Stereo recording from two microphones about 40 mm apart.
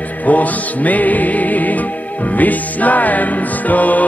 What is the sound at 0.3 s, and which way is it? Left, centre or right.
Music, left.